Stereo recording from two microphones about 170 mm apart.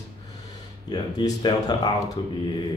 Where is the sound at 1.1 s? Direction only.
25° left (ahead or behind).